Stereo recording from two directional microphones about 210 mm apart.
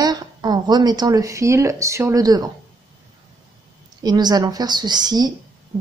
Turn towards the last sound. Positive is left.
turn(degrees=-20)  # may be behind; listen again after turning